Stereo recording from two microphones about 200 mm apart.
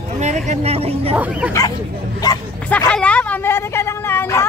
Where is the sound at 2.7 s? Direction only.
5° left (ahead or behind).